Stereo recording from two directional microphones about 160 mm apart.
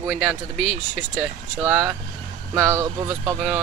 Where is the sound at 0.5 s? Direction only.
50° right (ahead or behind).